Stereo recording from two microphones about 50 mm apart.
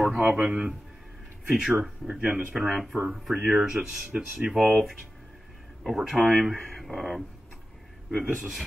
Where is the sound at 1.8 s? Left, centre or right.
Right.